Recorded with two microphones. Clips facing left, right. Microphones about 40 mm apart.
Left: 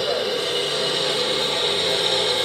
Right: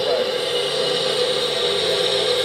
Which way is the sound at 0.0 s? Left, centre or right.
Centre.